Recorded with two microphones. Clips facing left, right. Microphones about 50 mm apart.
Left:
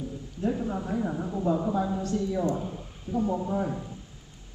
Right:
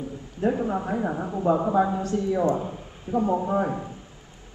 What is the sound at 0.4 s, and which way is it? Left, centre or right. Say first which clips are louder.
A man's voice: right 5 dB; right.